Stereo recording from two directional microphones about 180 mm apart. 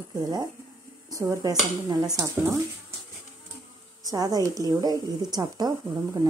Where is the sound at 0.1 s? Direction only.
20° right (ahead or behind).